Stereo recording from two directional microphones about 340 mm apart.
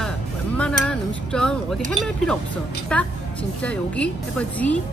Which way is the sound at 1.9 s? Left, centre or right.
Centre.